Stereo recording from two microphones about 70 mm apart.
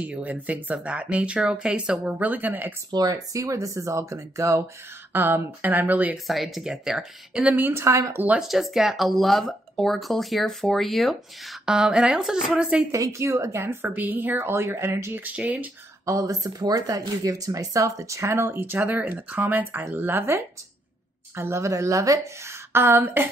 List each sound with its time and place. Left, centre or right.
0.0 s speech: right
2.9 s speech: right
5.1 s speech: right
6.1 s speech: centre
7.4 s speech: right
7.7 s speech: right
8.4 s speech: centre
12.9 s speech: right
13.9 s speech: right
15.2 s speech: right
16.1 s speech: right
21.4 s speech: right
22.5 s a sound: right